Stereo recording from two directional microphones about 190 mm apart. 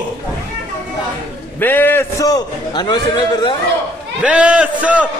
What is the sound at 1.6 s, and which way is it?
A man's voice, 10° left (ahead or behind).